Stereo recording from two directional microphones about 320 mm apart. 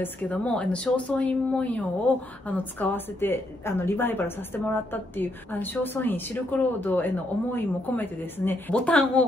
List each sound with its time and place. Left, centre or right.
0.0 s speech: centre